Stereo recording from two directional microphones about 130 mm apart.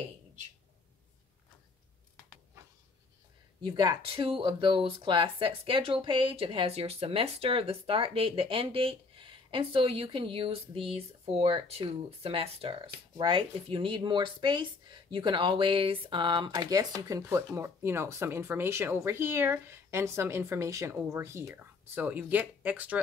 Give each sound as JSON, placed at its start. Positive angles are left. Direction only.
{"t": 3.6, "sound": "speech", "side_deg": -35}